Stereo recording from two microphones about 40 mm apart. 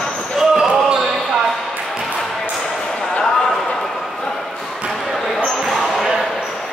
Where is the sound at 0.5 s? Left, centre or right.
Centre.